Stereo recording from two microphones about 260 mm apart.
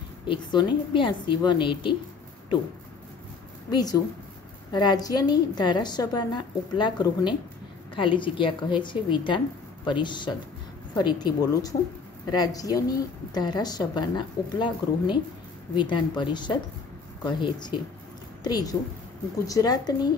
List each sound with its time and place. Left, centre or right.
0.3 s a woman's voice: centre
3.7 s a woman's voice: centre